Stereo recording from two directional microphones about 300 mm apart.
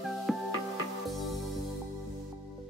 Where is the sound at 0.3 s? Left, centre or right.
Centre.